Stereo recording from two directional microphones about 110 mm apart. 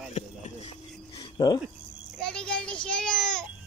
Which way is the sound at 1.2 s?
35° left (ahead or behind).